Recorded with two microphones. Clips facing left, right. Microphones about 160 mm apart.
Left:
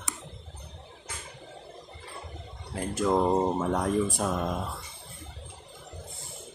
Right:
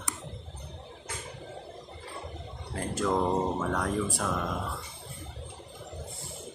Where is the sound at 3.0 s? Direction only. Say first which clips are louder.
Left 3 dB; 15° left (ahead or behind).